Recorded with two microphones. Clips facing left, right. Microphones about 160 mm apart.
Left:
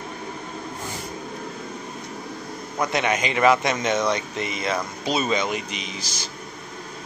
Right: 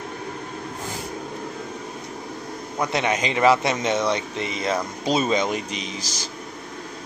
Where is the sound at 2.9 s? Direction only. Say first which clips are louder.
Right 1 dB; 30° right (ahead or behind).